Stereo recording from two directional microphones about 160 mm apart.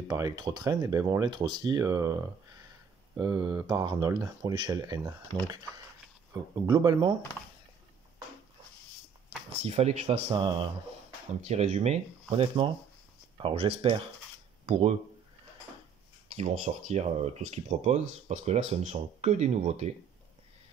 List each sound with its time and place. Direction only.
0.1 s speech: 25° right (ahead or behind)
6.5 s speech: 25° right (ahead or behind)
9.5 s speech: 40° right (ahead or behind)
10.4 s speech: 30° right (ahead or behind)
11.4 s speech: 45° right (ahead or behind)
16.3 s speech: 45° right (ahead or behind)